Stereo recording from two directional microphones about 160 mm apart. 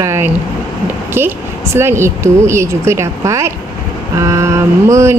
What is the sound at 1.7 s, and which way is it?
Speech, 15° right (ahead or behind).